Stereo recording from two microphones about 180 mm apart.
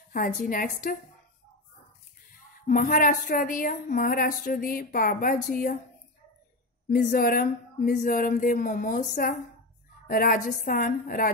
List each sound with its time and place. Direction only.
0.5 s speech: 50° left (ahead or behind)
2.6 s speech: 50° left (ahead or behind)
6.9 s speech: 55° left (ahead or behind)